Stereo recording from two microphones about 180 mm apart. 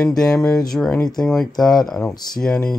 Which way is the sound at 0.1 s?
20° left (ahead or behind).